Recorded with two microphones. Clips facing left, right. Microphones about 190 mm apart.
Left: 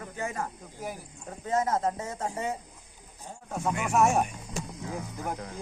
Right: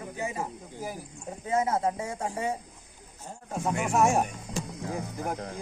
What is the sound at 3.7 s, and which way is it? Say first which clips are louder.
Speech: even; 30° right (ahead or behind).